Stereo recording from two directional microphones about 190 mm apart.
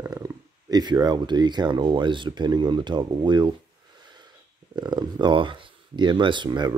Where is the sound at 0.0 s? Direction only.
20° right (ahead or behind).